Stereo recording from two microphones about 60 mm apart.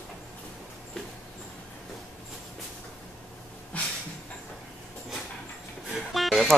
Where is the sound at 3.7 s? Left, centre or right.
Left.